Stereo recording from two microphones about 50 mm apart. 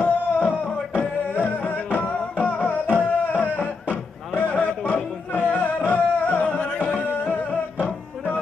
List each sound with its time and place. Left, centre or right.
0.0 s music: left